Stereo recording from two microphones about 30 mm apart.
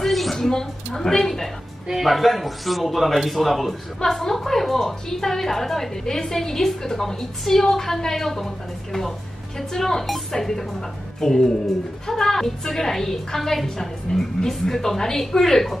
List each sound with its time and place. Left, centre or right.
0.0 s a sound: centre
0.4 s a woman's voice: centre
1.9 s a man's voice: centre
4.0 s a woman's voice: centre